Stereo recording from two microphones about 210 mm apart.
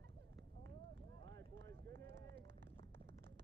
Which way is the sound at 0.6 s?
60° right (ahead or behind).